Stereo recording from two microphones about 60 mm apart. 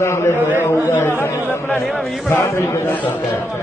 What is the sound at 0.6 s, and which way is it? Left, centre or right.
Chatter, left.